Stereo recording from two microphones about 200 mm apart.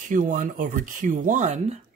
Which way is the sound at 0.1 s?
40° right (ahead or behind).